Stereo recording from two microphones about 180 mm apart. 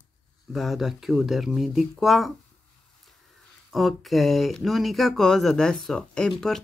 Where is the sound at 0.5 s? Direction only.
Centre (ahead or behind).